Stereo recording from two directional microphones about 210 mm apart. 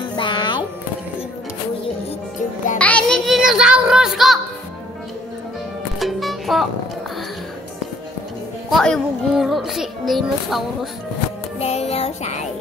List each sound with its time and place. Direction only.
0.1 s music: 20° left (ahead or behind)
2.8 s music: 5° left (ahead or behind)
5.9 s music: centre (ahead or behind)
8.6 s a child's voice: centre (ahead or behind)
11.6 s music: 30° left (ahead or behind)